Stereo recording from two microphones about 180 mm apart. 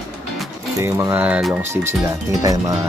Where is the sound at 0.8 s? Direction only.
10° right (ahead or behind).